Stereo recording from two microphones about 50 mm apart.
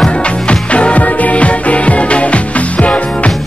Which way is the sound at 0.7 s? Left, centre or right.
Left.